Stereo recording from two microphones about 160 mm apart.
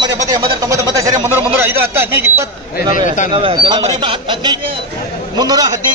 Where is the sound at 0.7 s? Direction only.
20° right (ahead or behind).